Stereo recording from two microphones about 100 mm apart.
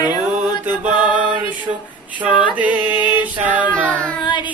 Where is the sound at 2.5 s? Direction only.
15° right (ahead or behind).